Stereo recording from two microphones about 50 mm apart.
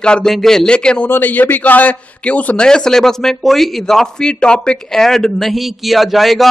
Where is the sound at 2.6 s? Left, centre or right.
Centre.